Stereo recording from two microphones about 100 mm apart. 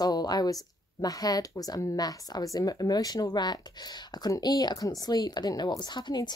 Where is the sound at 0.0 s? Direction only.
40° left (ahead or behind).